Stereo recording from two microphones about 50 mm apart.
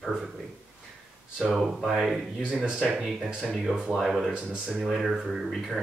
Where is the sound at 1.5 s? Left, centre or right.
Centre.